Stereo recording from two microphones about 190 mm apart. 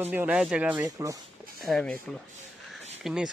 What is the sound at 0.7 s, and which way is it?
Speech, 20° right (ahead or behind).